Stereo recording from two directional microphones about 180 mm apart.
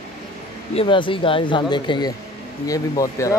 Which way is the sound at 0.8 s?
30° left (ahead or behind).